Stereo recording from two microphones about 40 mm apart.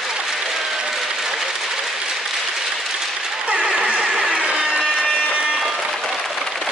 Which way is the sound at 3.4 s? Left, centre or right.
Right.